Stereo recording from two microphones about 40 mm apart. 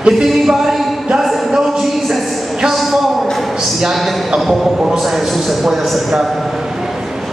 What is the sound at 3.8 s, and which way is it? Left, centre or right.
Speech, centre.